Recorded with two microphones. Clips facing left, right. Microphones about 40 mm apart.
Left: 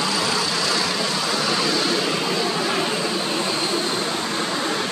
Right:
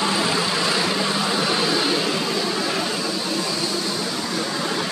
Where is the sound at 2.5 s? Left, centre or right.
Left.